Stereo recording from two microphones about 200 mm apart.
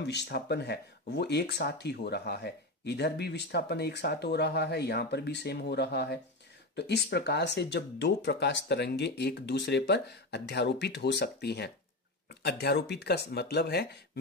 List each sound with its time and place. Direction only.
0.0 s speech: 60° left (ahead or behind)